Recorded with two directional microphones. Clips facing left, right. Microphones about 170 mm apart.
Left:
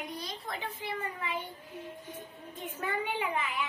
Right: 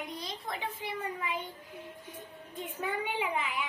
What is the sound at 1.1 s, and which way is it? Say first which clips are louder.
Speech: even; 10° right (ahead or behind).